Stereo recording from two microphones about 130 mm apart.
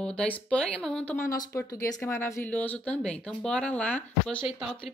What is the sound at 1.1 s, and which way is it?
Speech, 20° left (ahead or behind).